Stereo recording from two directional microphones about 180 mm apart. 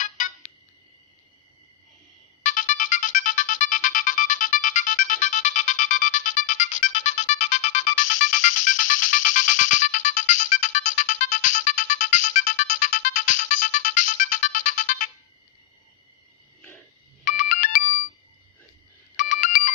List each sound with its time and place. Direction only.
0.0 s ringtone: 45° left (ahead or behind)
2.4 s ringtone: 45° left (ahead or behind)
17.2 s ringtone: 45° left (ahead or behind)
19.1 s ringtone: 45° left (ahead or behind)